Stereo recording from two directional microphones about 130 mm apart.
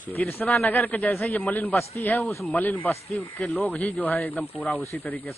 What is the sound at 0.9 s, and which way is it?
Speech, 5° left (ahead or behind).